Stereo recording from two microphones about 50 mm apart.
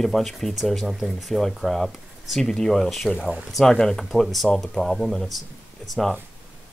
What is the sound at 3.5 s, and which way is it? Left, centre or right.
Speech, centre.